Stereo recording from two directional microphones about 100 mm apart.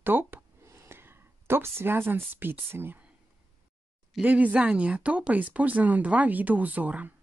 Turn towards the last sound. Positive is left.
turn(degrees=-15)  # may be behind; listen again after turning